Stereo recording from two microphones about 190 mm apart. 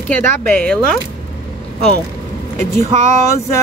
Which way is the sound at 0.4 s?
10° left (ahead or behind).